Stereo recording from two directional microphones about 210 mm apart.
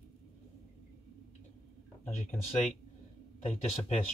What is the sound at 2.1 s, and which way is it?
Speech, 35° left (ahead or behind).